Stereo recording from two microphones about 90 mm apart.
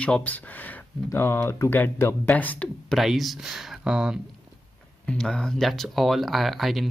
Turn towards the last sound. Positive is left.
turn(degrees=0)  # may be behind; listen again after turning